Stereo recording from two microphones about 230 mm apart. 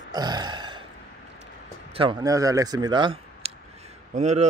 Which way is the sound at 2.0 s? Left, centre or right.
Centre.